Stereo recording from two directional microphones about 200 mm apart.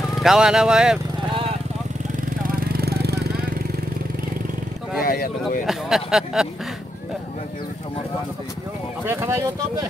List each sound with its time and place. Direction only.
0.1 s speech: centre (ahead or behind)
2.2 s vehicle: 50° right (ahead or behind)
5.0 s speech: 45° left (ahead or behind)
5.7 s speech: centre (ahead or behind)
9.0 s speech: 15° right (ahead or behind)